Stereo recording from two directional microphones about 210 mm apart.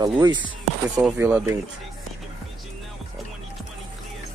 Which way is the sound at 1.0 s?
10° right (ahead or behind).